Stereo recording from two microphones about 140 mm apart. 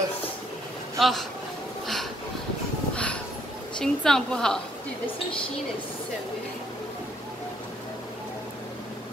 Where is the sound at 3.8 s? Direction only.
5° left (ahead or behind).